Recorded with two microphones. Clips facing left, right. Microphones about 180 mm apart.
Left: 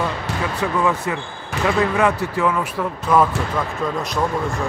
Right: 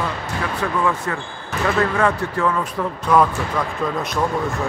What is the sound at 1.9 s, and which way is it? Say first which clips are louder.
A man's voice: left 1 dB; 10° left (ahead or behind).